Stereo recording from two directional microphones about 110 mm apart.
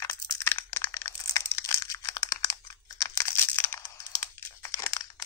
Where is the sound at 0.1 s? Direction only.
25° left (ahead or behind).